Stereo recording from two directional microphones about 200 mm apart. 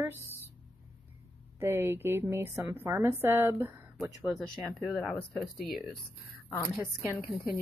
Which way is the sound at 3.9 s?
Centre (ahead or behind).